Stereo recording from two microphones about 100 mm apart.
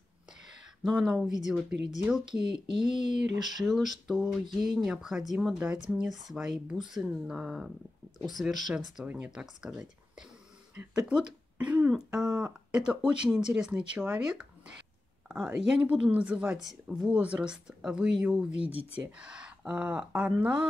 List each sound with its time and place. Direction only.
0.9 s speech: 5° right (ahead or behind)
8.7 s speech: 10° right (ahead or behind)
18.7 s speech: 80° left
18.9 s speech: 10° right (ahead or behind)